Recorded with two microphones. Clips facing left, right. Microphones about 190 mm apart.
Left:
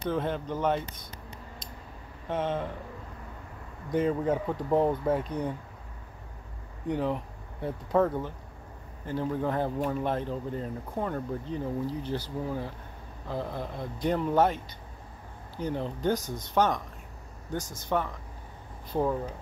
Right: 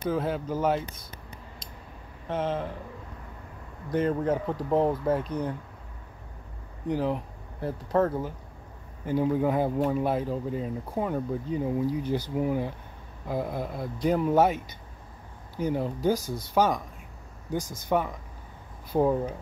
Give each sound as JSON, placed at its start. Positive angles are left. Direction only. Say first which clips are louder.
{"t": 0.0, "sound": "speech", "louder": "right 2 dB", "side_deg": -5}
{"t": 2.2, "sound": "speech", "louder": "right 1 dB", "side_deg": 0}
{"t": 3.9, "sound": "speech", "louder": "right 1 dB", "side_deg": 0}
{"t": 6.9, "sound": "speech", "louder": "right 2 dB", "side_deg": 0}
{"t": 9.0, "sound": "speech", "louder": "right 5 dB", "side_deg": -15}